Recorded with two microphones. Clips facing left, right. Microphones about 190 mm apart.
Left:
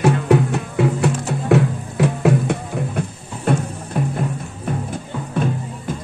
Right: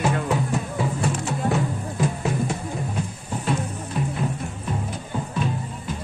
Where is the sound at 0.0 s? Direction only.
70° left (ahead or behind).